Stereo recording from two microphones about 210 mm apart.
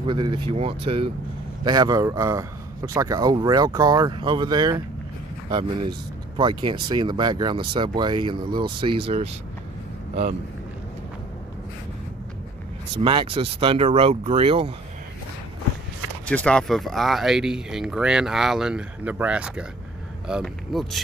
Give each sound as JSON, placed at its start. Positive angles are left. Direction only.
{"t": 0.0, "sound": "speech", "side_deg": -20}
{"t": 13.0, "sound": "speech", "side_deg": -25}
{"t": 16.3, "sound": "speech", "side_deg": 5}